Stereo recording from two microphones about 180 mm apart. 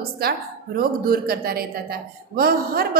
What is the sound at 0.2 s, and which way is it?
A woman's voice, 60° right (ahead or behind).